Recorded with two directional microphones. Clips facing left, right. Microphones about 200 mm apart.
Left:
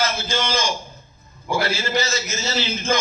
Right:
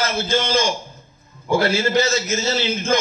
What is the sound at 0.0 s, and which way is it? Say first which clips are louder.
A man's voice: right 3 dB; 55° right (ahead or behind).